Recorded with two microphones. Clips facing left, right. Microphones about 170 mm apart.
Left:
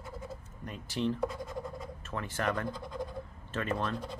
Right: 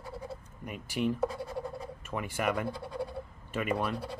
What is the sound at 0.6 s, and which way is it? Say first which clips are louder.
Speech: right 1 dB; 10° right (ahead or behind).